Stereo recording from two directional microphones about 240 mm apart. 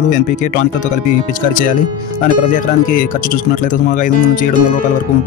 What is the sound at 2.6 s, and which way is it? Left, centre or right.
Speech, left.